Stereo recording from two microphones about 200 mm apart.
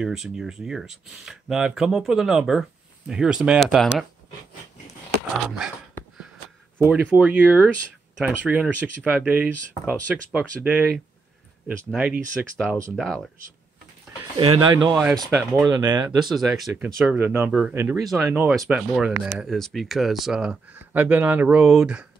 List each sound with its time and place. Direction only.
0.0 s speech: centre (ahead or behind)
6.8 s speech: 5° right (ahead or behind)
14.3 s speech: 25° right (ahead or behind)
15.3 s speech: 5° right (ahead or behind)
15.7 s speech: 20° right (ahead or behind)
16.3 s speech: centre (ahead or behind)
18.0 s speech: 5° right (ahead or behind)